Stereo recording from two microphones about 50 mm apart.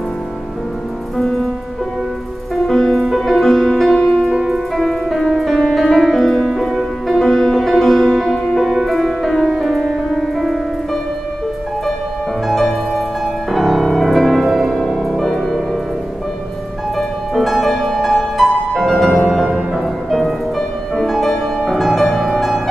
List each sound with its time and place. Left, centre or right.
1.1 s music: centre
2.6 s music: centre
4.3 s music: centre
4.7 s music: centre
12.4 s music: centre
16.9 s music: centre